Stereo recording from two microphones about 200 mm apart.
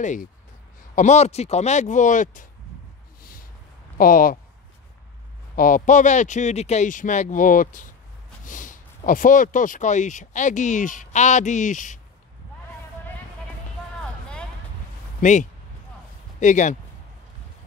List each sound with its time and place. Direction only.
0.0 s speech: 40° left (ahead or behind)
3.2 s a sound: 45° left (ahead or behind)
4.0 s speech: 45° left (ahead or behind)
5.6 s speech: 40° left (ahead or behind)
15.1 s speech: 40° left (ahead or behind)